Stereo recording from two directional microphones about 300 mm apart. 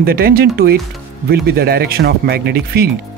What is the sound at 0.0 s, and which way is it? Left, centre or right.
Speech, right.